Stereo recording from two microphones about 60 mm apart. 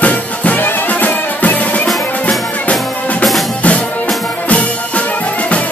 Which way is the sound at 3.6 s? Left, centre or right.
Left.